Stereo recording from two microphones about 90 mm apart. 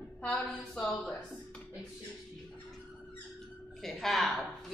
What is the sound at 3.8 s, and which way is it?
Speech, 5° left (ahead or behind).